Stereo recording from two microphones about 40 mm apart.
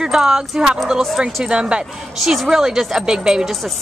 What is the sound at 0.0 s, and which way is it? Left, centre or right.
Speech, centre.